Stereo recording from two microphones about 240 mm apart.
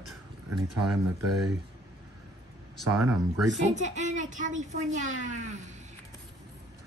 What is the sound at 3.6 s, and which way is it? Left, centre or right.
Speech, right.